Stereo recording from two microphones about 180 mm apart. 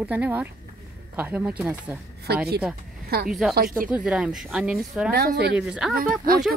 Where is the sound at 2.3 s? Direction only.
60° right (ahead or behind).